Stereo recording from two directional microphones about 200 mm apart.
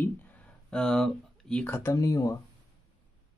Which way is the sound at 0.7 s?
5° left (ahead or behind).